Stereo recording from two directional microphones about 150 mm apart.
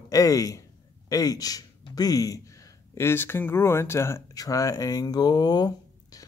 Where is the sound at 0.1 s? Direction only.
25° left (ahead or behind).